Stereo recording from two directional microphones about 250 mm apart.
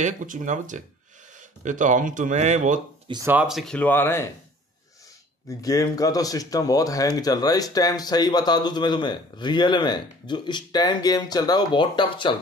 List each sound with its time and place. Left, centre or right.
0.0 s speech: right
3.1 s speech: centre
5.5 s speech: centre